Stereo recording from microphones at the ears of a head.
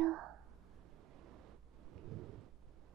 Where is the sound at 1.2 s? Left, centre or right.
Right.